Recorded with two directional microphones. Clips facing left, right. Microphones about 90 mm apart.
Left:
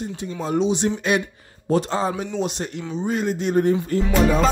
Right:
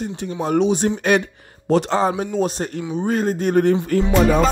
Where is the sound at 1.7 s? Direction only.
70° right (ahead or behind).